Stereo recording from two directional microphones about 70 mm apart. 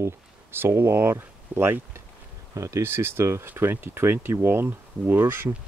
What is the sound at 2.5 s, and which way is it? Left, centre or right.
Speech, right.